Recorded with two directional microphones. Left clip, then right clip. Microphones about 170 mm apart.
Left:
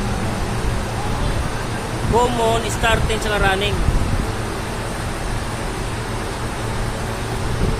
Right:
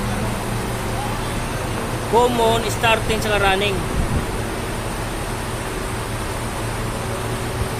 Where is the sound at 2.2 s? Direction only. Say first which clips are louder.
Right 1 dB; 20° right (ahead or behind).